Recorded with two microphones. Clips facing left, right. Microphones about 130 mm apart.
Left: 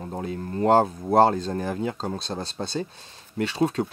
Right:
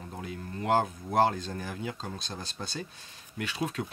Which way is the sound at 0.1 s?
35° left (ahead or behind).